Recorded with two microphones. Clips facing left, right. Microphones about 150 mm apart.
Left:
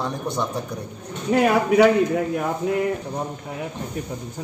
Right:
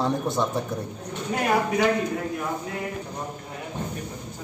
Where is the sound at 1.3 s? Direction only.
90° left.